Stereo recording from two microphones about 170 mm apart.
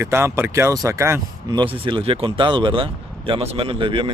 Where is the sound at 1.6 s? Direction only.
30° right (ahead or behind).